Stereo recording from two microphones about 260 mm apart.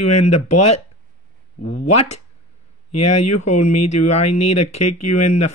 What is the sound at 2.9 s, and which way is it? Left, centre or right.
Speech, left.